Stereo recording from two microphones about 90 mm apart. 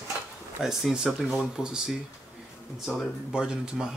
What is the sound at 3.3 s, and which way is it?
Speech, 10° right (ahead or behind).